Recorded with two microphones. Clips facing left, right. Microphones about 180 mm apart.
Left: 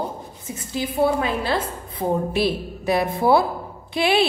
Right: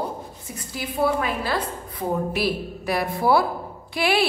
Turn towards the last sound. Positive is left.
turn(degrees=25)  # may be behind; listen again after turning